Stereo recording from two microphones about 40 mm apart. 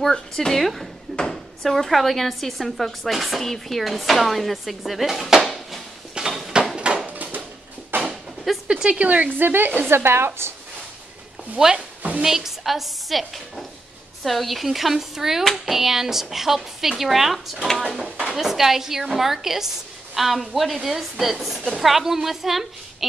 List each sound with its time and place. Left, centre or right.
0.1 s a woman's voice: centre
0.6 s speech: centre
1.1 s drawer open or close: centre
1.6 s speech: centre
6.1 s a sound: centre
7.1 s a sound: right
7.9 s a sound: right
8.6 s a woman's voice: right
9.3 s a woman's voice: right
9.8 s a woman's voice: right
11.5 s a woman's voice: centre